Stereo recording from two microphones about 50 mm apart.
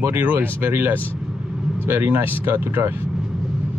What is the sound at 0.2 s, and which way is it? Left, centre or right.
Speech, right.